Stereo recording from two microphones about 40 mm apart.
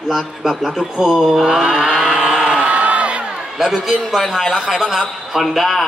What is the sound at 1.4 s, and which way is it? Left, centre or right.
Mantra, centre.